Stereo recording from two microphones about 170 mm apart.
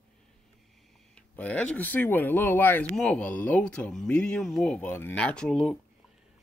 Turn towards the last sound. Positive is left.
turn(degrees=0)  # may be behind; listen again after turning